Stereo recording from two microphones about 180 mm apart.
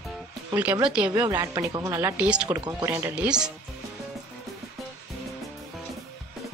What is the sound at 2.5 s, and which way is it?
Speech, 15° right (ahead or behind).